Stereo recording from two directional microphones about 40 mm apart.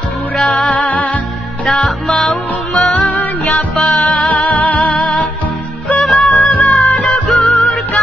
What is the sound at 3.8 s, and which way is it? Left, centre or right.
Music, centre.